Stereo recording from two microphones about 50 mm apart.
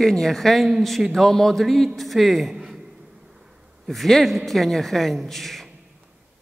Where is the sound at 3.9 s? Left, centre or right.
Centre.